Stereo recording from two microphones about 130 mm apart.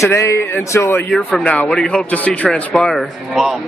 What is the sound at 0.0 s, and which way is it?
Speech, 20° left (ahead or behind).